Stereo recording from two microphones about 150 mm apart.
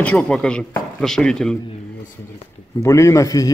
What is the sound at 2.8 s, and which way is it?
Speech, 20° left (ahead or behind).